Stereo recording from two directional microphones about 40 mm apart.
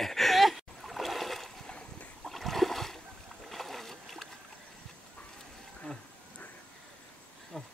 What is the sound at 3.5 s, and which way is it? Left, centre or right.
Boat, centre.